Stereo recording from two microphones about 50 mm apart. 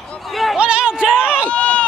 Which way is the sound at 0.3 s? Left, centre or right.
Centre.